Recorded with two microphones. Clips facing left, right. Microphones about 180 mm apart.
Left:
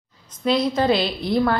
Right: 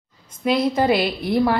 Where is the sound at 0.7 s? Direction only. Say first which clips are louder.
Right 1 dB; 10° right (ahead or behind).